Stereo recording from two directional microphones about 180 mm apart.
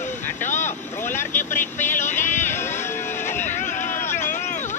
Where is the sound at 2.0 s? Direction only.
40° left (ahead or behind).